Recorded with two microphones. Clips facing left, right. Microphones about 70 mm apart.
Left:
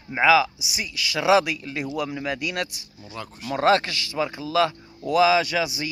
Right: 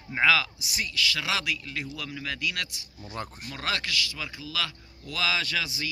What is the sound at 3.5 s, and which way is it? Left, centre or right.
Speech, left.